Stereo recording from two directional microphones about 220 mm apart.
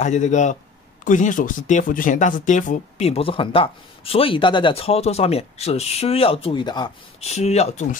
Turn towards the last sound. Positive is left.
turn(degrees=30)  # may be behind; listen again after turning